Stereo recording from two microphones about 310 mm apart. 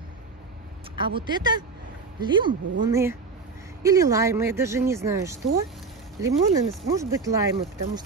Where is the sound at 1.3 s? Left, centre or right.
Centre.